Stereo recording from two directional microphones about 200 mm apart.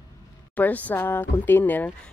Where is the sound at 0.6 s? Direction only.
10° left (ahead or behind).